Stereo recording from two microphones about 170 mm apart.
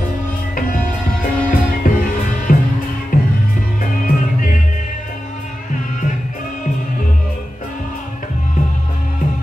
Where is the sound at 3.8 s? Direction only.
55° left (ahead or behind).